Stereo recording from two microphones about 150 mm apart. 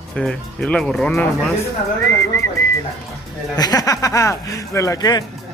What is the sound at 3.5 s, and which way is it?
Speech, 25° left (ahead or behind).